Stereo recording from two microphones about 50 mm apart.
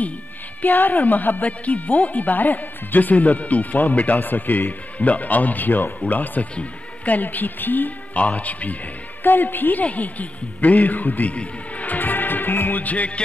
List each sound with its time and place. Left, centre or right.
0.6 s speech: left
9.2 s speech: left
11.3 s music: left